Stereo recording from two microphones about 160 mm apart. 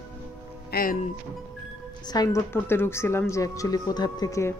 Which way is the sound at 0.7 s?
70° left (ahead or behind).